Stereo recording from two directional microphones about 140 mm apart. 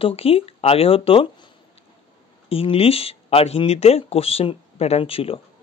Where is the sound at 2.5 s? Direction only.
45° left (ahead or behind).